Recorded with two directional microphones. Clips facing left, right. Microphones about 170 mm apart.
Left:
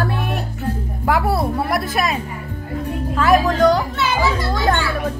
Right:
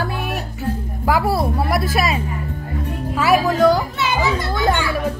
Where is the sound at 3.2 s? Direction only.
5° right (ahead or behind).